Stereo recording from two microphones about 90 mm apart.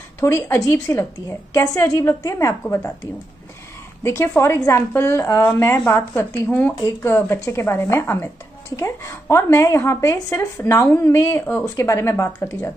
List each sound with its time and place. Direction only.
0.2 s a woman's voice: 35° left (ahead or behind)
4.0 s a woman's voice: 30° left (ahead or behind)